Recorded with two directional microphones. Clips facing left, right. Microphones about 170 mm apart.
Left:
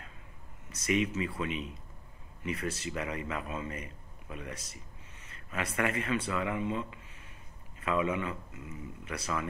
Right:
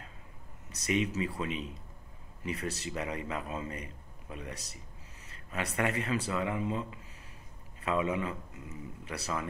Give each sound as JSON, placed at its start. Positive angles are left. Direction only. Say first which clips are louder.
{"t": 0.7, "sound": "a man's voice", "louder": "left 1 dB", "side_deg": -35}